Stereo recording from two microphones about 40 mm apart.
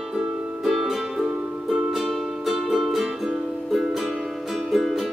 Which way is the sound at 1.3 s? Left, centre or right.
Right.